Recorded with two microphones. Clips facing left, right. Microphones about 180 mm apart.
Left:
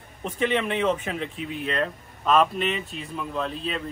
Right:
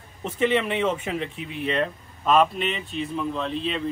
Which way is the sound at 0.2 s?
Centre (ahead or behind).